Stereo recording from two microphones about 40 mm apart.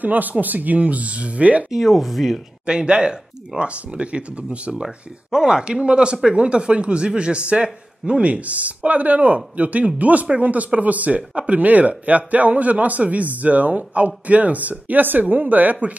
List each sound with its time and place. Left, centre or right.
0.0 s a man's voice: right
1.7 s speech: centre
2.6 s speech: right
5.3 s a man's voice: centre; by 15.8 s right